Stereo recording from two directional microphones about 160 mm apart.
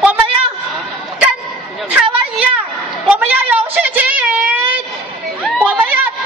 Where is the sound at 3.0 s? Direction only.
10° right (ahead or behind).